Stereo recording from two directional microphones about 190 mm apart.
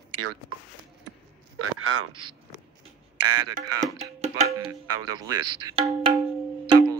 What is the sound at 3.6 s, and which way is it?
Music, 20° right (ahead or behind).